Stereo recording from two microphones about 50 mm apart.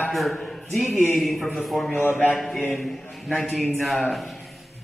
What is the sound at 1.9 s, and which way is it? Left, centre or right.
Speech, left.